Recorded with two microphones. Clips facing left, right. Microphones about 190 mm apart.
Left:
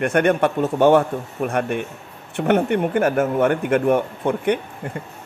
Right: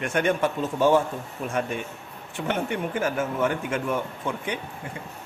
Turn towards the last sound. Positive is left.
turn(degrees=60)  # may be behind; listen again after turning